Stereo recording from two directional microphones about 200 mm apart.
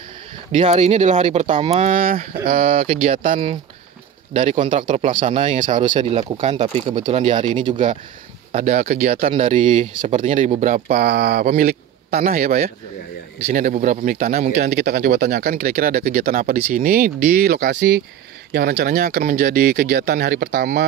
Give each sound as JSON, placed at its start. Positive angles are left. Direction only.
{"t": 0.5, "sound": "speech", "side_deg": -35}
{"t": 7.7, "sound": "speech", "side_deg": -35}
{"t": 18.5, "sound": "speech", "side_deg": -45}